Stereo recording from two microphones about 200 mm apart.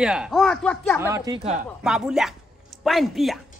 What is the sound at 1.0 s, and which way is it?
Speech, 15° right (ahead or behind).